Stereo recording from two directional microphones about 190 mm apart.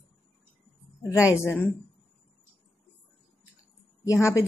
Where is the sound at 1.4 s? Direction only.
10° left (ahead or behind).